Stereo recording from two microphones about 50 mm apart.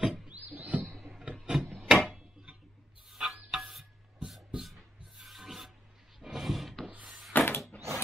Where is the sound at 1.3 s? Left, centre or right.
Centre.